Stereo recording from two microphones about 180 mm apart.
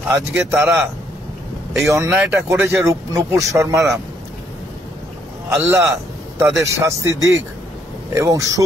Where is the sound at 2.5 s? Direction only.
15° right (ahead or behind).